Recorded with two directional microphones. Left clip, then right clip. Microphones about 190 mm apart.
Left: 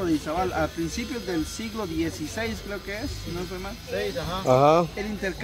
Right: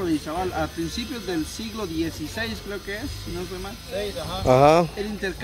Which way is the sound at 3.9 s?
40° left (ahead or behind).